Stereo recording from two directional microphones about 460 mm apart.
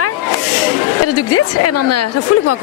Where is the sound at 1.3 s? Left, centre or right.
Left.